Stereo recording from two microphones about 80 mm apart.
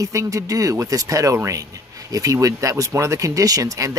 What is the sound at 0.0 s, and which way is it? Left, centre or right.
Speech, right.